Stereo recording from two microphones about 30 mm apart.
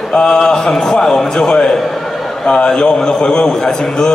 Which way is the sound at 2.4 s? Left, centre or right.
Left.